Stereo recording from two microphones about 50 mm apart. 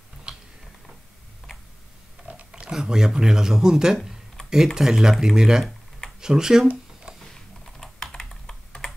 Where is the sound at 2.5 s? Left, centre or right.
Centre.